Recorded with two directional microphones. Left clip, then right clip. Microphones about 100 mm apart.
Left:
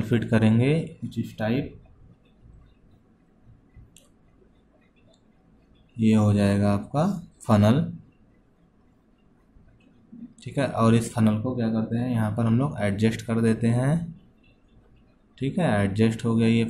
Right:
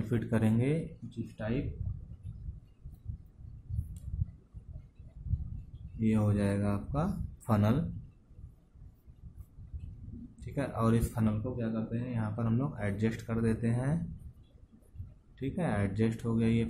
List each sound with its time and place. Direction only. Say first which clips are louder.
0.0 s speech: left 9 dB; 15° right (ahead or behind)
1.1 s speech: left 9 dB; 5° left (ahead or behind)
5.9 s speech: left 9 dB; 5° right (ahead or behind)
10.4 s speech: left 10 dB; 10° right (ahead or behind)
11.4 s speech: left 9 dB; 5° left (ahead or behind)
12.2 s speech: left 8 dB; 5° right (ahead or behind)
15.3 s speech: left 10 dB; 10° right (ahead or behind)